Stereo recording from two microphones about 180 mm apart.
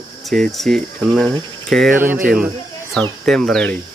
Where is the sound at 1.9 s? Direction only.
10° right (ahead or behind).